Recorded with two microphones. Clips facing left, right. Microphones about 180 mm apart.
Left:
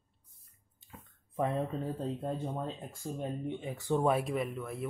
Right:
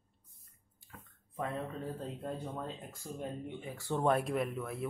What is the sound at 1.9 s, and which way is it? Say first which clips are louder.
Speech: left 5 dB; 30° left (ahead or behind).